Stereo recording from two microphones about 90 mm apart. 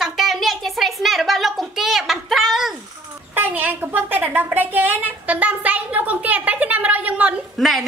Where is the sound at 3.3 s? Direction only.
20° right (ahead or behind).